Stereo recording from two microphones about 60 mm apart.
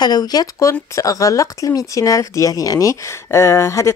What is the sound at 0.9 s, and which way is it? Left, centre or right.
Speech, left.